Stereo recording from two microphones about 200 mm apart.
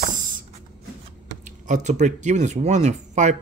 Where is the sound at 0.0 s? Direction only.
40° right (ahead or behind).